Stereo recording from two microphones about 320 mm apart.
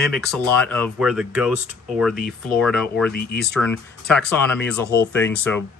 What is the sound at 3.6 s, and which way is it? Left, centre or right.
Speech, centre.